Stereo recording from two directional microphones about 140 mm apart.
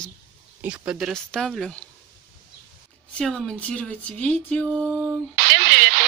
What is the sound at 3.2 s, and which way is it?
A woman's voice, 5° left (ahead or behind).